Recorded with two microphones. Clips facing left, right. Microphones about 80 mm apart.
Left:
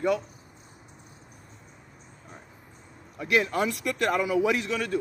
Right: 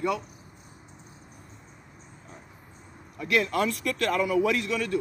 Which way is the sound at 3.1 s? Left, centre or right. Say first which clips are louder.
Even; centre.